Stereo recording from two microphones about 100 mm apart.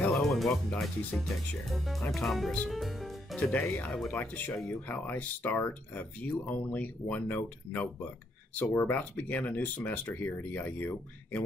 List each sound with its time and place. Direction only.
0.1 s speech: centre (ahead or behind)
2.7 s music: centre (ahead or behind)
3.7 s speech: 15° left (ahead or behind)